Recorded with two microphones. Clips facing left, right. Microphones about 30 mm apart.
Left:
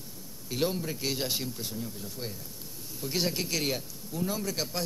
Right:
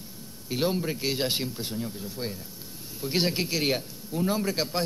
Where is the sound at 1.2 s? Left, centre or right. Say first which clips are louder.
Right 4 dB; right.